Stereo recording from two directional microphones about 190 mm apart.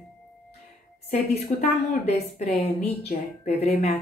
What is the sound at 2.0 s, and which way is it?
A woman's voice, 35° left (ahead or behind).